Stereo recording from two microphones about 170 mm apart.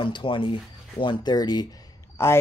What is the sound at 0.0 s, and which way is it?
Speech, 30° left (ahead or behind).